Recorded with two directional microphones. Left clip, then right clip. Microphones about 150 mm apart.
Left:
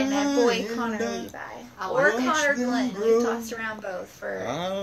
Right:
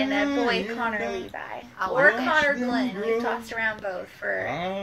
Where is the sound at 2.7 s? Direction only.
20° left (ahead or behind).